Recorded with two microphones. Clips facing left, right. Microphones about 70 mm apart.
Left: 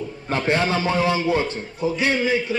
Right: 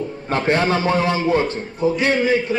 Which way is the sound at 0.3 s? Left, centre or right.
Right.